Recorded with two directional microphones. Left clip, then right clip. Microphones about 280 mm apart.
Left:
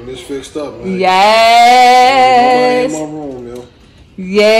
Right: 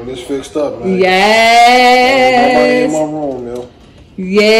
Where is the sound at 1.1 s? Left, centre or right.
Right.